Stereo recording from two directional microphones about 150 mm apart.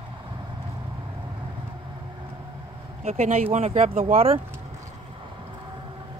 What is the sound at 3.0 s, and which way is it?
Speech, 50° right (ahead or behind).